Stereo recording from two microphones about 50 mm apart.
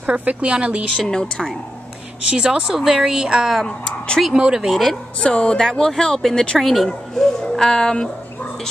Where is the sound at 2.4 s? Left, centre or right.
Centre.